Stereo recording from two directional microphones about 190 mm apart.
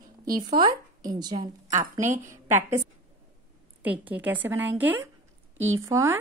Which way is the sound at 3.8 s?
10° right (ahead or behind).